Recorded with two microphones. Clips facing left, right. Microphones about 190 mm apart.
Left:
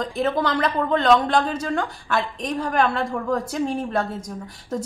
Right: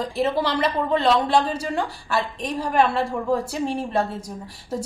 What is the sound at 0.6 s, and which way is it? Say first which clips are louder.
A woman's voice: even; 5° right (ahead or behind).